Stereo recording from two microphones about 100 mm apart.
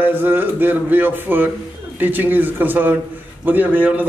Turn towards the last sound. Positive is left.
turn(degrees=-15)  # may be behind; listen again after turning